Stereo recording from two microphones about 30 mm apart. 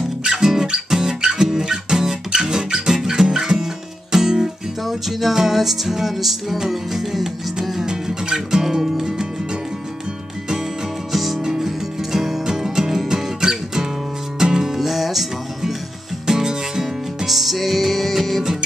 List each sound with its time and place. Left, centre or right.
0.2 s music: centre
4.8 s music: centre
7.8 s music: right
11.1 s music: centre
16.3 s music: centre
17.3 s music: centre